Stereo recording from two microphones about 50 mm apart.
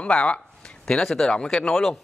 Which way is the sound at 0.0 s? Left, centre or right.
Left.